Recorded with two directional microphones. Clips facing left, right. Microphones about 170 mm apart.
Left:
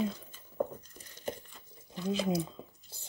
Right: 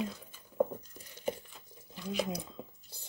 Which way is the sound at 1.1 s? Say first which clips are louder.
Right 3 dB; 10° right (ahead or behind).